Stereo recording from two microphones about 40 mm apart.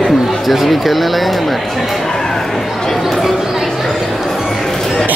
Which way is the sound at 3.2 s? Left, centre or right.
Centre.